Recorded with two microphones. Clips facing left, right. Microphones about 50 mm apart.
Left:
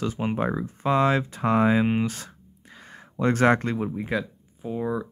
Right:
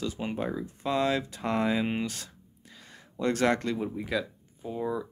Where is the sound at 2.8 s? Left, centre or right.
Left.